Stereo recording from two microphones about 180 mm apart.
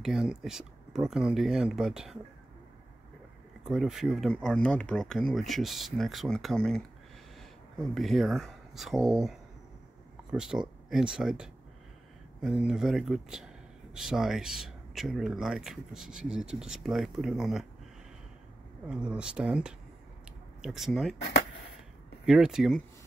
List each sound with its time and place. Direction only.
0.0 s speech: centre (ahead or behind)
3.6 s speech: 5° right (ahead or behind)
7.8 s speech: centre (ahead or behind)
18.9 s speech: 5° right (ahead or behind)
21.2 s a sound: 65° left (ahead or behind)
22.2 s speech: 5° right (ahead or behind)